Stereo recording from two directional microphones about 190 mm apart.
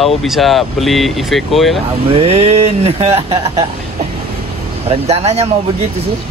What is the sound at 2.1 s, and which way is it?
Speech, 30° right (ahead or behind).